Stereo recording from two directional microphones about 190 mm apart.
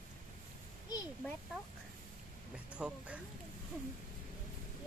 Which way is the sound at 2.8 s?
5° right (ahead or behind).